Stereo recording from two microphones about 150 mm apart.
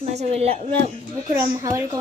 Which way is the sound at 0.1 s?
45° right (ahead or behind).